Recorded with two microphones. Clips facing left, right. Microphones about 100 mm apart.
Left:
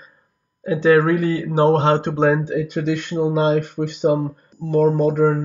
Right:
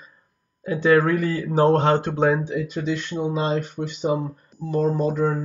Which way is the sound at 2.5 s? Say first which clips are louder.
Left 4 dB; 55° left (ahead or behind).